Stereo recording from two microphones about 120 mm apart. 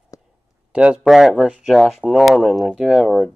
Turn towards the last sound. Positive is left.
turn(degrees=0)  # may be behind; listen again after turning